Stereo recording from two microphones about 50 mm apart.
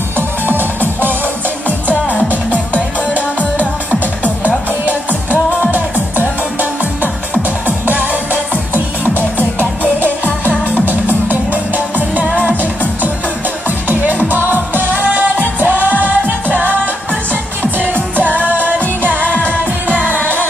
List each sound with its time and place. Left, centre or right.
2.1 s music: left
5.7 s music: right
10.7 s music: right
13.7 s music: right
19.2 s music: left